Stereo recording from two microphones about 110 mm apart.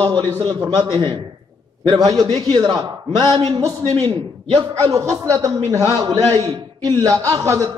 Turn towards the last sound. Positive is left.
turn(degrees=-25)  # may be behind; listen again after turning